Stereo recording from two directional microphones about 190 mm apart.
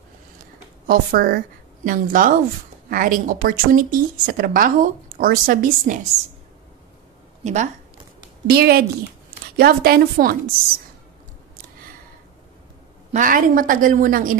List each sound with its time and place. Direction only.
0.8 s speech: 50° right (ahead or behind)
7.4 s speech: 40° right (ahead or behind)
8.5 s a woman's voice: 55° right (ahead or behind)
13.1 s speech: 45° right (ahead or behind)